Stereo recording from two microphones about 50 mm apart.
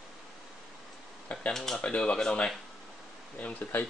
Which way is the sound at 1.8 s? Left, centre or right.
Left.